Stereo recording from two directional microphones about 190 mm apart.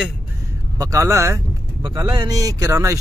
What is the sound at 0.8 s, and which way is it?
Speech, 15° right (ahead or behind).